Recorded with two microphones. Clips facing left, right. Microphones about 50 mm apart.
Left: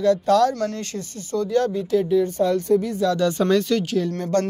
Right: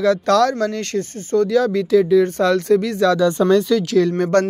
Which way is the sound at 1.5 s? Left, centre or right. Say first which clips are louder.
Right 2 dB; right.